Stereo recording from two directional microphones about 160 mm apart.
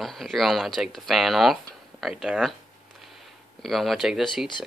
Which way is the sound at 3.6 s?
Centre (ahead or behind).